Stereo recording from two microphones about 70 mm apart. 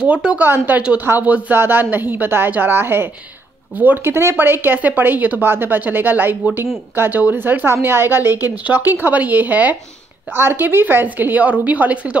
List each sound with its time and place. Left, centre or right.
0.0 s speech: centre
0.4 s a woman's voice: right